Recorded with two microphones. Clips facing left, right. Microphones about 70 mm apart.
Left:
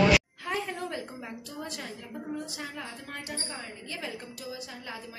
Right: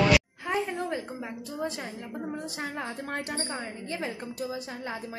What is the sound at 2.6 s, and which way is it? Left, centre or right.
A woman's voice, right.